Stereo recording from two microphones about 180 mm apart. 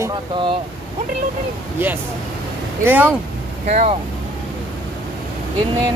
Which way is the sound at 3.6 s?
40° right (ahead or behind).